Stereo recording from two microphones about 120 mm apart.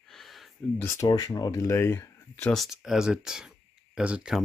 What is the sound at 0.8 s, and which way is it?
Speech, 25° left (ahead or behind).